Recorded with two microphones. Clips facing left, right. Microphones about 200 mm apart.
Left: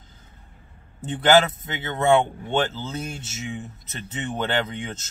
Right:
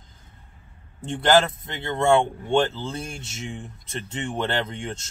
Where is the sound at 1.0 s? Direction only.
5° left (ahead or behind).